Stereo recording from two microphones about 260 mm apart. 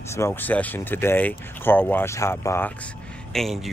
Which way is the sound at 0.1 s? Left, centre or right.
Centre.